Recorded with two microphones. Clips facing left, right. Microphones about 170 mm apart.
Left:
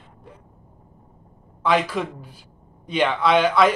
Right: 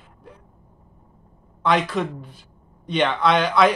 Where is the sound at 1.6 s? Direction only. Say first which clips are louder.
Even; 5° left (ahead or behind).